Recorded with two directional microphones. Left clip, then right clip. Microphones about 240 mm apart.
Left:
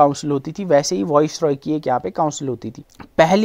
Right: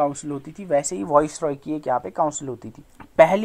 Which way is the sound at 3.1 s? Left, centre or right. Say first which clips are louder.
Left 1 dB; left.